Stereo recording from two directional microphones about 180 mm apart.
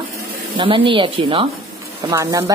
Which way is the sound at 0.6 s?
30° right (ahead or behind).